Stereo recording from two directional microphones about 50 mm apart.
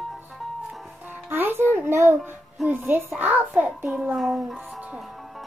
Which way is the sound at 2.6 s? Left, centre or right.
Right.